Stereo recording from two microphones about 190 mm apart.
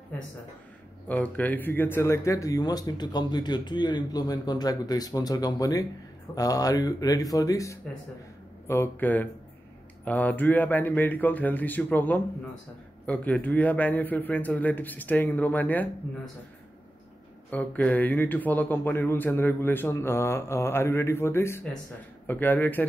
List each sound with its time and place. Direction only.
1.0 s speech: 10° left (ahead or behind)
17.5 s speech: 10° left (ahead or behind)